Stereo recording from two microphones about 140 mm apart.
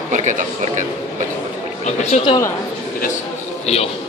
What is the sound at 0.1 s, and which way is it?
Speech, 60° right (ahead or behind).